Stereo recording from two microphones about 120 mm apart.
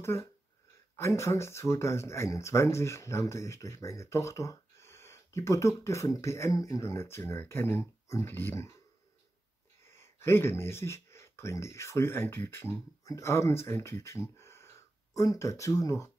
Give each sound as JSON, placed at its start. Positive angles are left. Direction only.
{"t": 0.0, "sound": "speech", "side_deg": 20}
{"t": 9.8, "sound": "speech", "side_deg": 20}